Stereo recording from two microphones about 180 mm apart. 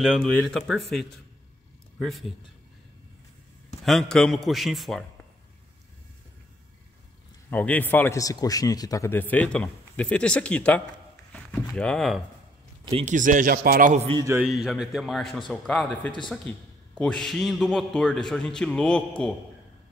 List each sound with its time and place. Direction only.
0.0 s a man's voice: centre (ahead or behind)
3.8 s a man's voice: 5° left (ahead or behind)
7.4 s a man's voice: 10° left (ahead or behind)
12.9 s speech: 45° right (ahead or behind)
13.9 s a man's voice: 30° right (ahead or behind)
14.4 s a man's voice: 5° right (ahead or behind)